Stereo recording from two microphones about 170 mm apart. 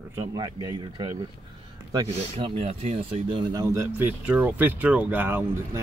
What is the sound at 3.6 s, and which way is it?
Speech, 15° right (ahead or behind).